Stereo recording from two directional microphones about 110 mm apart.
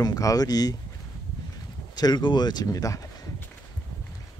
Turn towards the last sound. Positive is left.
turn(degrees=30)  # may be behind; listen again after turning